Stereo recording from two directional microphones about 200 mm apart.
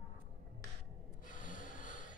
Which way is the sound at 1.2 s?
40° left (ahead or behind).